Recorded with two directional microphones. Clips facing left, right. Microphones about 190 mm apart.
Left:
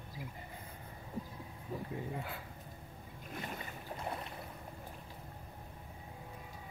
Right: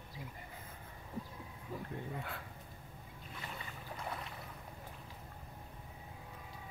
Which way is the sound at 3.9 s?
25° left (ahead or behind).